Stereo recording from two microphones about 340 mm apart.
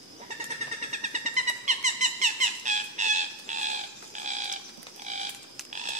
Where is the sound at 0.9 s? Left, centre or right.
Right.